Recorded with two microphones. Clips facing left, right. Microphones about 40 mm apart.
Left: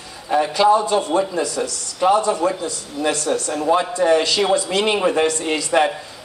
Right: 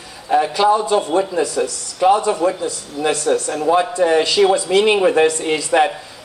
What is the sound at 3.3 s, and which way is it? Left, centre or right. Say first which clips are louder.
Speech: right 2 dB; centre.